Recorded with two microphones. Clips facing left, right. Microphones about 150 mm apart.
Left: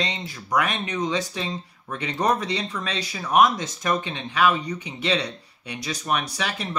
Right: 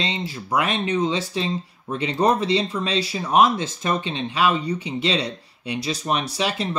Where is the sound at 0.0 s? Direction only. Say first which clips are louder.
Right 3 dB; 30° right (ahead or behind).